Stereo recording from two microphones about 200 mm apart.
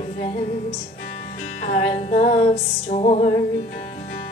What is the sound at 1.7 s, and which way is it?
Music, 40° left (ahead or behind).